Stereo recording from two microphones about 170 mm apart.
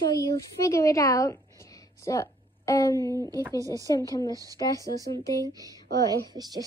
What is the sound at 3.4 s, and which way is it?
Speech, 20° right (ahead or behind).